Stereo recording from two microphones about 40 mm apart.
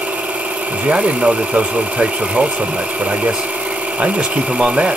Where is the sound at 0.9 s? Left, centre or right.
Right.